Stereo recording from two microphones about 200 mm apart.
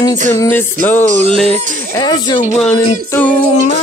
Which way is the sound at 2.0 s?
20° left (ahead or behind).